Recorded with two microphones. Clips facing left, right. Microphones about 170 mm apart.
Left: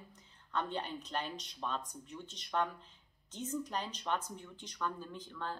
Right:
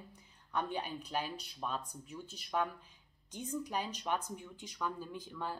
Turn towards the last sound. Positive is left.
turn(degrees=-10)  # may be behind; listen again after turning